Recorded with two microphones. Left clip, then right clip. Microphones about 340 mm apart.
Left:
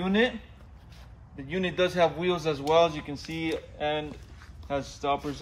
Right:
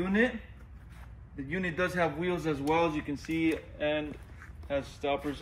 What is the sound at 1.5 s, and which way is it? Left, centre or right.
A man's voice, centre.